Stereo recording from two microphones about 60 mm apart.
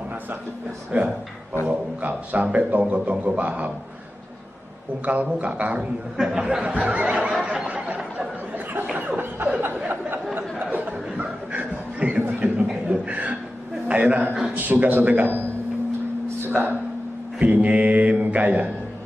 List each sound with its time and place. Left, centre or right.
0.9 s a man's voice: right
5.0 s a man's voice: right
6.1 s a man's voice: centre
7.4 s a sound: right
8.9 s snicker: right
9.8 s a sound: right
10.7 s chuckle: right
12.2 s a sound: right
12.6 s chuckle: centre
13.8 s a man's voice: right
16.4 s a sound: right
17.4 s mantra: right